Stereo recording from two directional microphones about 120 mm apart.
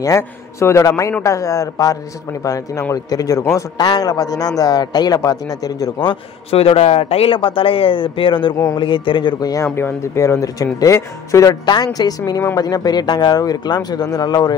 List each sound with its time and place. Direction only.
0.0 s a man's voice: 25° left (ahead or behind)
6.5 s a man's voice: 55° left (ahead or behind); by 9.7 s 30° left (ahead or behind)
9.8 s a man's voice: 20° left (ahead or behind)